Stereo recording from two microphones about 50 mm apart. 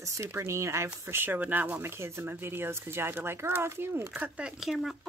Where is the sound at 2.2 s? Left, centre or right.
Right.